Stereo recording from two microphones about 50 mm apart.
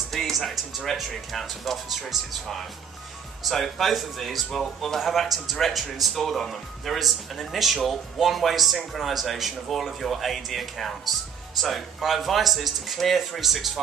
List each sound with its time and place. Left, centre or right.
0.1 s music: centre
0.5 s speech: centre